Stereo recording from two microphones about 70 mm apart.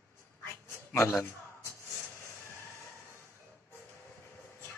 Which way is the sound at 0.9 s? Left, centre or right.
Left.